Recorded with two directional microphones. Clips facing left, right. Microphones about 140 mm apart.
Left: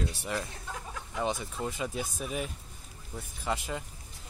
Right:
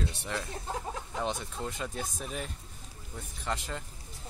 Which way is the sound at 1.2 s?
5° left (ahead or behind).